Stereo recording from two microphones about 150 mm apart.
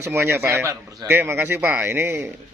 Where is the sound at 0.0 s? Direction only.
15° right (ahead or behind).